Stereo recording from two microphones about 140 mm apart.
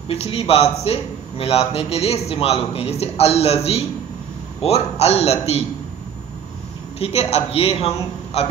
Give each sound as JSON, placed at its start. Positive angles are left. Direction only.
{"t": 0.1, "sound": "a man's voice", "side_deg": 45}
{"t": 7.0, "sound": "a man's voice", "side_deg": 45}